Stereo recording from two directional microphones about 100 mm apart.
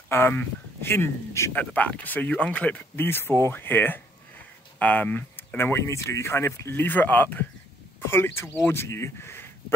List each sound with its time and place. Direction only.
0.1 s speech: 20° left (ahead or behind)
1.5 s speech: 15° left (ahead or behind)